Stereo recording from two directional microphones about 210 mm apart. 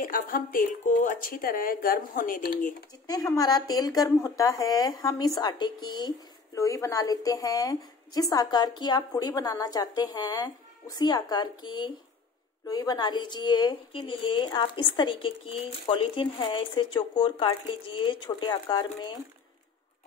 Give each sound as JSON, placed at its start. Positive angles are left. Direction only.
{"t": 0.0, "sound": "speech", "side_deg": 40}
{"t": 3.1, "sound": "a woman's voice", "side_deg": 15}